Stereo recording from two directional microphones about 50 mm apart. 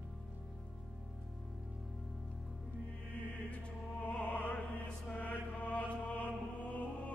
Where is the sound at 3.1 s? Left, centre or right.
Left.